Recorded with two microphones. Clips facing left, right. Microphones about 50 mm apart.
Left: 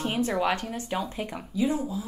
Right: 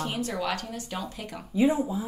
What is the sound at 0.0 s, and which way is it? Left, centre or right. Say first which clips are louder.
Speech: left 4 dB; left.